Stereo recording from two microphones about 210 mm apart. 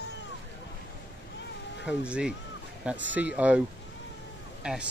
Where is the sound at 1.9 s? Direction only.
5° right (ahead or behind).